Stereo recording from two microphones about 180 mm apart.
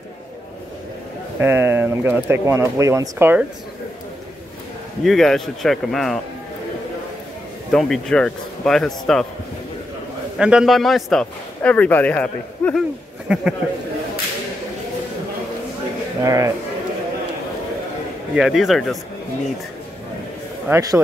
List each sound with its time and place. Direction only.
1.4 s speech: 10° right (ahead or behind)
5.0 s a man's voice: centre (ahead or behind)
7.7 s a man's voice: 5° left (ahead or behind)
10.3 s a man's voice: 5° right (ahead or behind)
13.3 s a man's voice: 5° right (ahead or behind)
16.2 s speech: 15° right (ahead or behind)
18.3 s a man's voice: centre (ahead or behind)